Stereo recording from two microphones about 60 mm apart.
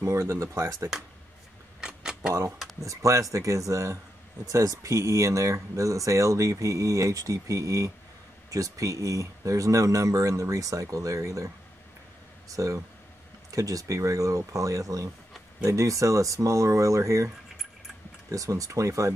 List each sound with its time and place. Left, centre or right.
0.0 s speech: right
1.8 s camera: centre
2.8 s speech: right
18.3 s speech: right